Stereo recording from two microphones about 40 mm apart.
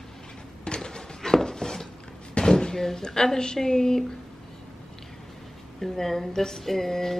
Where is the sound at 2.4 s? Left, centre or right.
Centre.